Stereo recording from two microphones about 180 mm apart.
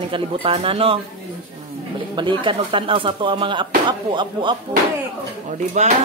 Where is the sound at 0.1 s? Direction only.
30° right (ahead or behind).